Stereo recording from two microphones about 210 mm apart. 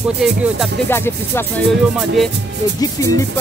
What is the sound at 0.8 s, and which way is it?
Speech, 10° left (ahead or behind).